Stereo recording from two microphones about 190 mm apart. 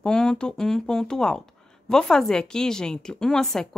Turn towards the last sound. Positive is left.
turn(degrees=0)  # may be behind; listen again after turning